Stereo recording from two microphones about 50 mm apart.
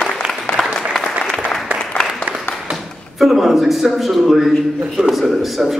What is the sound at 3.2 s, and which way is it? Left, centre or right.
Speech, centre.